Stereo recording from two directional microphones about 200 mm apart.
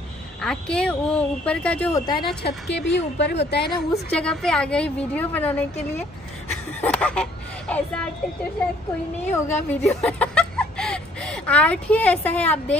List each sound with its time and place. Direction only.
0.4 s a woman's voice: 5° left (ahead or behind); by 2.2 s 20° left (ahead or behind)
2.7 s a woman's voice: 60° left (ahead or behind)
3.9 s a woman's voice: 5° left (ahead or behind)
9.3 s speech: 10° left (ahead or behind)